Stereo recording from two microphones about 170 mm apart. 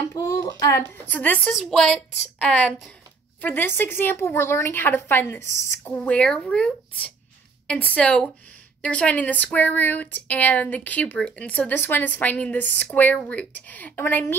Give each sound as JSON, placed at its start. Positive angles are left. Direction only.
{"t": 0.1, "sound": "a woman's voice", "side_deg": 20}